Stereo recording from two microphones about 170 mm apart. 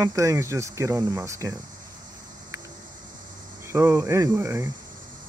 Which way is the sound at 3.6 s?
15° right (ahead or behind).